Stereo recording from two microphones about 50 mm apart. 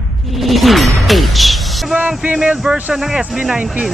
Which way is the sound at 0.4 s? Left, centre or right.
Centre.